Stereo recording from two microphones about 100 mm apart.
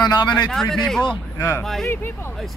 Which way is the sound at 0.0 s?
45° left (ahead or behind).